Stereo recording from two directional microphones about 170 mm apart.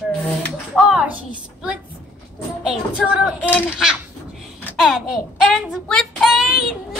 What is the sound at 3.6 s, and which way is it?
A child's voice, 5° right (ahead or behind).